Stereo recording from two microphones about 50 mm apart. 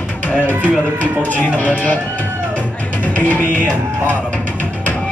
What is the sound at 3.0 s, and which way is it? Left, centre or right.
Music, left.